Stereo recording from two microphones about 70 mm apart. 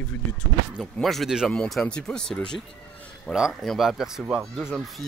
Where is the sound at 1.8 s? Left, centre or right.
Centre.